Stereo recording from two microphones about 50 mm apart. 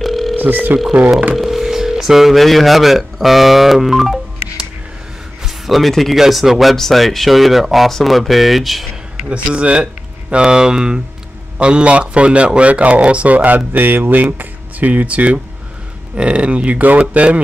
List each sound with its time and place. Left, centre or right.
0.0 s telephone: centre
0.4 s speech: right
1.3 s speech: centre
5.4 s a sound: centre
6.1 s speech: centre
9.3 s a man's voice: right